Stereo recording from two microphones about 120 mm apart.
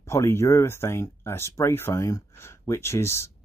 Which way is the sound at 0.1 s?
20° left (ahead or behind).